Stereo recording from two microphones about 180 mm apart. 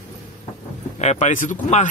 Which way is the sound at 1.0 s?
40° left (ahead or behind).